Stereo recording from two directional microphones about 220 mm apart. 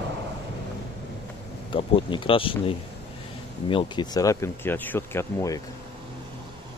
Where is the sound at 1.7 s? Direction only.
25° left (ahead or behind).